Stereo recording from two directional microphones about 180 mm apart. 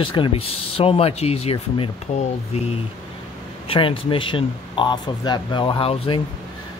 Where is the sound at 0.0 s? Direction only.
30° left (ahead or behind).